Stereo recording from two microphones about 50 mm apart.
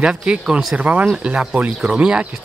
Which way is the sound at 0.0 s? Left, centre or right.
Right.